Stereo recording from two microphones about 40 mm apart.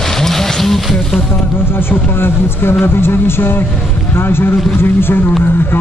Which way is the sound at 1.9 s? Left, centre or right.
Left.